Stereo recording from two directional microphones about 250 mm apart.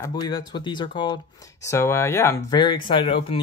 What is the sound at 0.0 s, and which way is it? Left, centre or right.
Speech, centre.